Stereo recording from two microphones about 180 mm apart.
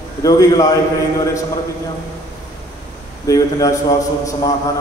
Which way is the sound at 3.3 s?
20° left (ahead or behind).